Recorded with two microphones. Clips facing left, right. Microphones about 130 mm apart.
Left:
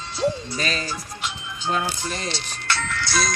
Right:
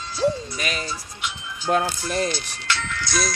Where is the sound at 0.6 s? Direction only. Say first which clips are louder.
Left 2 dB; 15° right (ahead or behind).